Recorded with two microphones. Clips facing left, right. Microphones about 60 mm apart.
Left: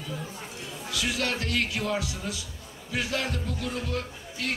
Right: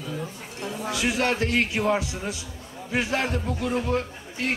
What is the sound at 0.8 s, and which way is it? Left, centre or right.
A man's voice, right.